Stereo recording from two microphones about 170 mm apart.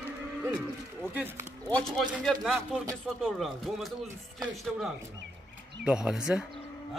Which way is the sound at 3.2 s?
Centre (ahead or behind).